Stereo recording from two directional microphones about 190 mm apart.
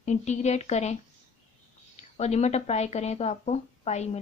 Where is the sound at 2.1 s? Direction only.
35° left (ahead or behind).